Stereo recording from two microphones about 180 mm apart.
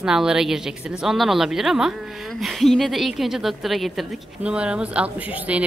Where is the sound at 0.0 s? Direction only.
5° right (ahead or behind).